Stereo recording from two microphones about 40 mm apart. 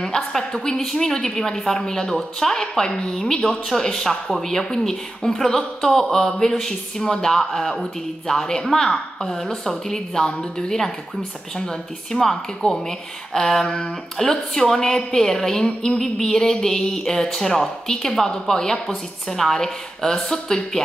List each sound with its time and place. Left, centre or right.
0.0 s speech: centre
13.7 s a sound: left
14.1 s speech: centre